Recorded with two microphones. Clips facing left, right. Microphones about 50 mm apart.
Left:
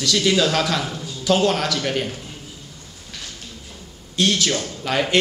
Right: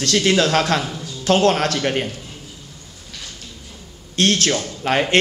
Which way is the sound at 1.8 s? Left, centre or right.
Right.